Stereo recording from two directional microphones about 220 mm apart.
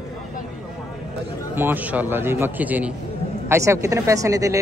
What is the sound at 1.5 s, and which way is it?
A man's voice, 10° right (ahead or behind).